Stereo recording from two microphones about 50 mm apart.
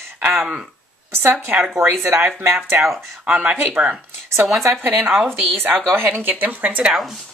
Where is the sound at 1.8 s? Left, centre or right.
Right.